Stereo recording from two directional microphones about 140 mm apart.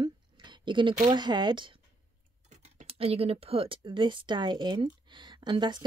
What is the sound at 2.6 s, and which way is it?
A woman's voice, 50° right (ahead or behind).